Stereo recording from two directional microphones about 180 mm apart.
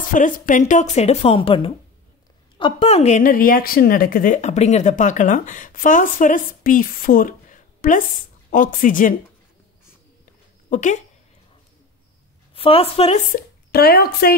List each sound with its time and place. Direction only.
0.1 s a woman's voice: 45° left (ahead or behind)
10.7 s speech: 40° left (ahead or behind)
12.5 s speech: 30° left (ahead or behind)
13.3 s speech: 60° left (ahead or behind)